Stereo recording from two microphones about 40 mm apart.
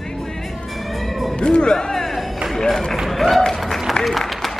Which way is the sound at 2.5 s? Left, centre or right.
Centre.